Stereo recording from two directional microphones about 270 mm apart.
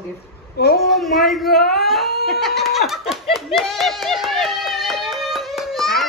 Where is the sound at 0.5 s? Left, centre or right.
Left.